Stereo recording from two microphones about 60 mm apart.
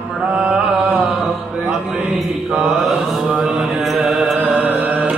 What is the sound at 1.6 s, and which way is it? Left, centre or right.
Mantra, centre.